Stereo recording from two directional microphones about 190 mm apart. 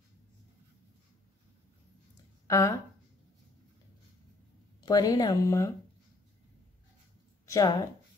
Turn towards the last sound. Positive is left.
turn(degrees=20)  # may be behind; listen again after turning